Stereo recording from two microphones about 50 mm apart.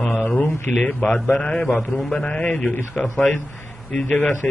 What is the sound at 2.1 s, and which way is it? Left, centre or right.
Speech, left.